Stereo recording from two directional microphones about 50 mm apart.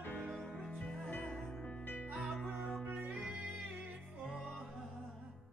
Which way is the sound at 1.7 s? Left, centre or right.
Left.